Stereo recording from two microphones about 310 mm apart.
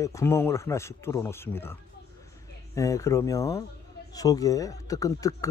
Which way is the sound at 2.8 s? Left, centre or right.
Centre.